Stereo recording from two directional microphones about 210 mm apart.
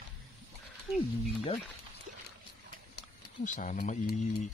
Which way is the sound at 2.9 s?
40° left (ahead or behind).